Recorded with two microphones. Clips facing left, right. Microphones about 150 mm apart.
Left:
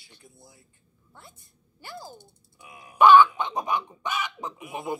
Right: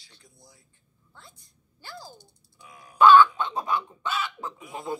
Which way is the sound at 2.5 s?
Centre (ahead or behind).